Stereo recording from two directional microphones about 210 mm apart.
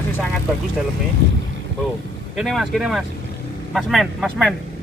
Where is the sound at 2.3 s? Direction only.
Centre (ahead or behind).